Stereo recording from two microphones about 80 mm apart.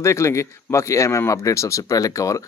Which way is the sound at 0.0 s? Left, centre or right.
Left.